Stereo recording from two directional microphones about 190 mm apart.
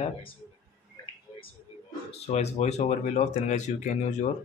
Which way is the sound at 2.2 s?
35° left (ahead or behind).